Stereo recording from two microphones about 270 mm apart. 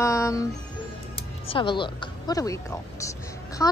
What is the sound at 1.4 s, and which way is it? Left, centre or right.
A woman's voice, centre.